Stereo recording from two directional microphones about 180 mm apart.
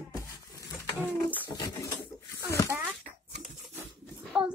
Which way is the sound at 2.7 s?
10° right (ahead or behind).